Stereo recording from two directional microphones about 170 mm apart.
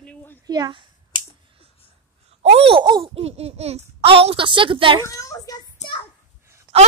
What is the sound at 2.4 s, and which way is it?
A child's voice, 35° right (ahead or behind).